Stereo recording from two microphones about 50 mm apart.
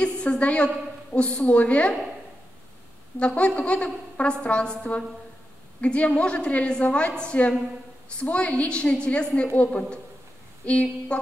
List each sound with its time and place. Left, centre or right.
0.0 s a woman's voice: left
3.2 s a woman's voice: left